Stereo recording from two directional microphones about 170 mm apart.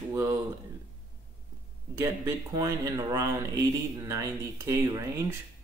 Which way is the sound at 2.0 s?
15° right (ahead or behind).